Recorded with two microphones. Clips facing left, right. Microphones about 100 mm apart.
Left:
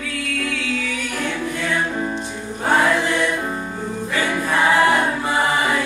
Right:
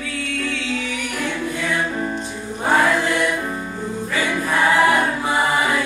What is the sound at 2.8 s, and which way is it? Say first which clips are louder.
Music: even; centre (ahead or behind).